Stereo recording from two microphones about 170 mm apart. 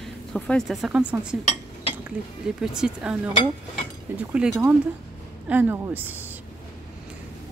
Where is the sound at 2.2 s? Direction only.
5° right (ahead or behind).